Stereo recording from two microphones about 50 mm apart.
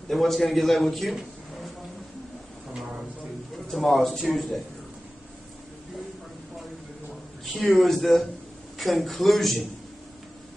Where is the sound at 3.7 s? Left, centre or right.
Centre.